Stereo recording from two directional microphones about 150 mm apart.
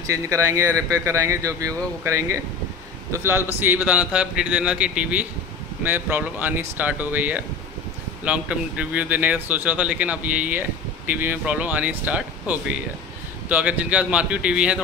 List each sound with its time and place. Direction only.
0.0 s speech: 20° right (ahead or behind)